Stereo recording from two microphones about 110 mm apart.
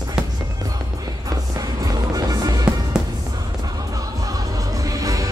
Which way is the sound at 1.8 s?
35° right (ahead or behind).